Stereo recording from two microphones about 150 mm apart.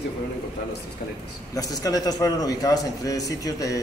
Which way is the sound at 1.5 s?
25° left (ahead or behind).